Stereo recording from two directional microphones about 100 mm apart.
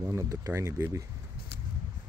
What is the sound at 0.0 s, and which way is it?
Speech, 30° right (ahead or behind).